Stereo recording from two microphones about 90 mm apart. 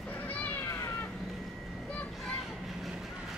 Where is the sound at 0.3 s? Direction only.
20° left (ahead or behind).